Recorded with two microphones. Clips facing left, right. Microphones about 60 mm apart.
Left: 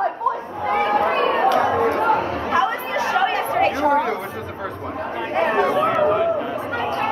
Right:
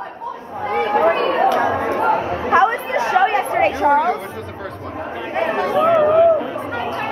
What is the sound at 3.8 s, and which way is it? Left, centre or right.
Chatter, centre.